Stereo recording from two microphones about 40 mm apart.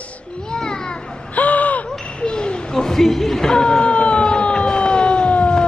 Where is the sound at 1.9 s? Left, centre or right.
Left.